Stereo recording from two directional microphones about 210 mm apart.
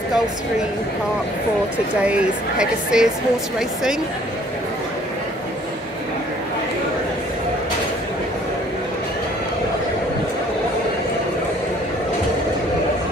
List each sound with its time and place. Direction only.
2.0 s speech: 5° right (ahead or behind)